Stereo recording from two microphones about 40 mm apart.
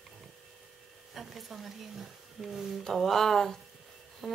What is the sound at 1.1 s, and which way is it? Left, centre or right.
Speech, centre.